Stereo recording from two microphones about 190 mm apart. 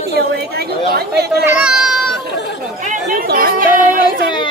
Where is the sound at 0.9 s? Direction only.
60° right (ahead or behind).